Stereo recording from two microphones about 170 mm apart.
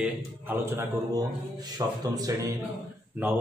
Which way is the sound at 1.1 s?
25° right (ahead or behind).